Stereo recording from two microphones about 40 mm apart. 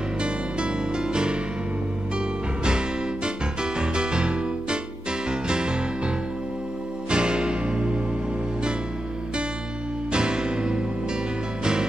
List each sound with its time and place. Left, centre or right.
0.2 s music: right
3.8 s music: right
10.1 s music: right